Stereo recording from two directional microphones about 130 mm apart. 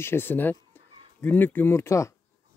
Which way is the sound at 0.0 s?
15° left (ahead or behind).